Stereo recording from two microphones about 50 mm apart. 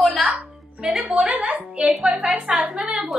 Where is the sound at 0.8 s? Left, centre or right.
Right.